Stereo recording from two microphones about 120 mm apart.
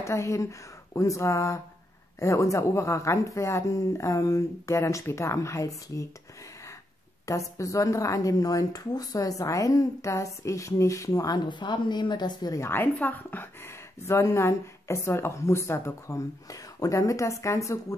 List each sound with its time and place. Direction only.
0.0 s a woman's voice: 25° left (ahead or behind)
7.2 s a woman's voice: 25° left (ahead or behind)
12.6 s a woman's voice: 15° left (ahead or behind)